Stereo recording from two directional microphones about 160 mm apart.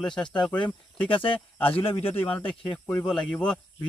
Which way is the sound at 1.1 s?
35° left (ahead or behind).